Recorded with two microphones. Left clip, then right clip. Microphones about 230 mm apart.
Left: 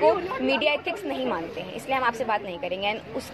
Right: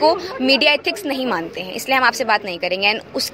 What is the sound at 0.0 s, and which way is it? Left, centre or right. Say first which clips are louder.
A woman's voice: right 5 dB; right.